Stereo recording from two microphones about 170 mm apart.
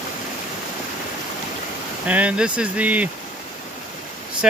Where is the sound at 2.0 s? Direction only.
10° right (ahead or behind).